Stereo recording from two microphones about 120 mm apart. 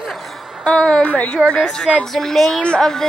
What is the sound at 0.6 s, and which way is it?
A woman's voice, 5° left (ahead or behind).